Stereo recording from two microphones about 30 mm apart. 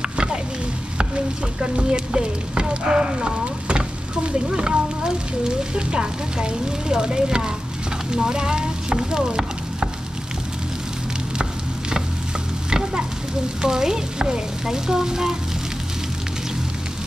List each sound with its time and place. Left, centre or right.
0.0 s a sound: right
1.6 s speech: right
2.7 s stir: right
5.8 s speech: right
12.6 s stir: right
13.6 s speech: right